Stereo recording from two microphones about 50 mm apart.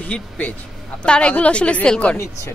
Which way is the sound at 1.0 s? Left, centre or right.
Left.